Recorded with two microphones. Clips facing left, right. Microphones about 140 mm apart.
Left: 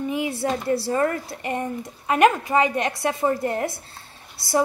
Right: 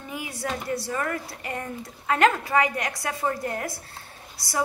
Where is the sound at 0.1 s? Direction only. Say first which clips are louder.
Left 3 dB; 25° left (ahead or behind).